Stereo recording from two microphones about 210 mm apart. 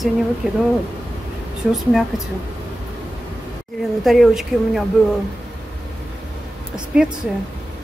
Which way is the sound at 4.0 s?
Centre (ahead or behind).